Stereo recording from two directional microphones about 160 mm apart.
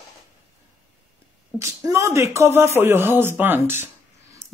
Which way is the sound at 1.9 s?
20° right (ahead or behind).